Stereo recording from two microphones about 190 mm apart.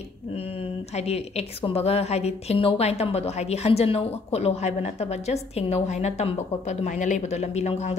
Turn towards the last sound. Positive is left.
turn(degrees=35)  # may be behind; listen again after turning